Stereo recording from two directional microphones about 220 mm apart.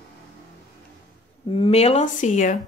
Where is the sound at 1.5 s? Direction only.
25° left (ahead or behind).